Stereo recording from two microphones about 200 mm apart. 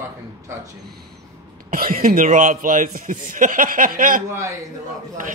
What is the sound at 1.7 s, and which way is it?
Speech, 45° right (ahead or behind).